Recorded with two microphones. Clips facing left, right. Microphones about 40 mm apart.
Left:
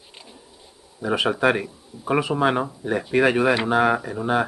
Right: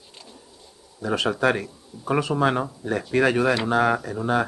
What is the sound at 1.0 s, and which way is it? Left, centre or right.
Speech, centre.